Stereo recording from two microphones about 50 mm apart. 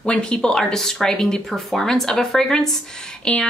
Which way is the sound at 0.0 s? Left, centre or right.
Centre.